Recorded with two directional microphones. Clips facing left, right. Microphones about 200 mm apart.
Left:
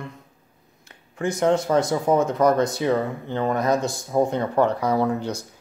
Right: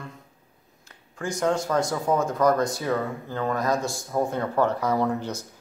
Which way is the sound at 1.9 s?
20° left (ahead or behind).